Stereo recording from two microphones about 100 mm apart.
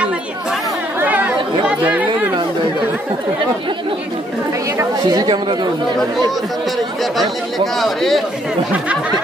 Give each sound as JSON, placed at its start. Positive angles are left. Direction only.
{"t": 0.9, "sound": "chatter", "side_deg": -15}
{"t": 5.0, "sound": "speech", "side_deg": -45}
{"t": 7.0, "sound": "speech", "side_deg": 0}